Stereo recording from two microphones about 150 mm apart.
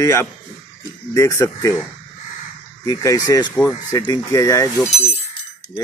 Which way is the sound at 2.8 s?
25° left (ahead or behind).